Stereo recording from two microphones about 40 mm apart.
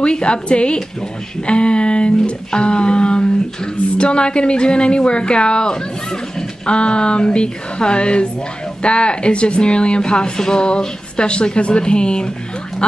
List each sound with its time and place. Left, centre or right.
0.0 s speech: left